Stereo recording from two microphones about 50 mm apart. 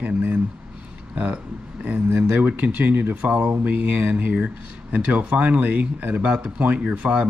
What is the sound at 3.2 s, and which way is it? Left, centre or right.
Speech, right.